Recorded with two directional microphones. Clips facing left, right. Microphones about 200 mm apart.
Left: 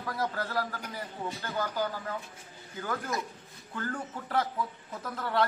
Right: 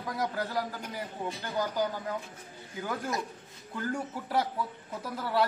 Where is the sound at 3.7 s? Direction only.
10° right (ahead or behind).